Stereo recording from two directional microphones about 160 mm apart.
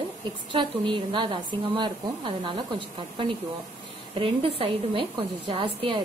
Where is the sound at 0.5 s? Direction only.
30° right (ahead or behind).